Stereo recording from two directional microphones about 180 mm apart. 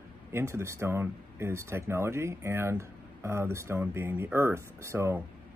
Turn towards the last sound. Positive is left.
turn(degrees=-15)  # may be behind; listen again after turning